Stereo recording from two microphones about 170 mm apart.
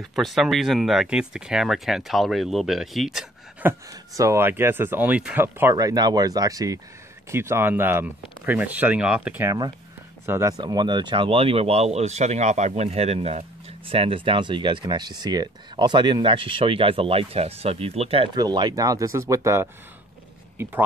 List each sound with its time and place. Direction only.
0.0 s speech: centre (ahead or behind)
3.6 s speech: 20° right (ahead or behind)
10.6 s speech: 25° right (ahead or behind)